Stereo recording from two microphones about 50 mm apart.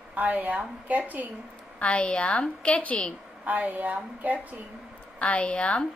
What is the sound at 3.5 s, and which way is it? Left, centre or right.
A woman's voice, right.